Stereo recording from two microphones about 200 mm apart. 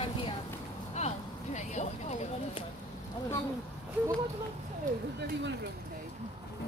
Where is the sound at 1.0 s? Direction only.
35° left (ahead or behind).